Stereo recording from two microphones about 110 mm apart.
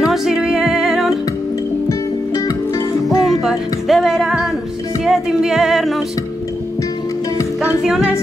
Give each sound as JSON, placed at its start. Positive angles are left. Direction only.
{"t": 0.0, "sound": "music", "side_deg": -5}
{"t": 1.9, "sound": "music", "side_deg": 35}
{"t": 3.3, "sound": "music", "side_deg": 0}
{"t": 7.8, "sound": "music", "side_deg": -5}